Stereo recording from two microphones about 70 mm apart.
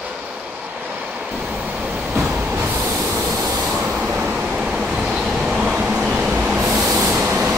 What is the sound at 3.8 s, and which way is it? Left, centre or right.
Vehicle, centre.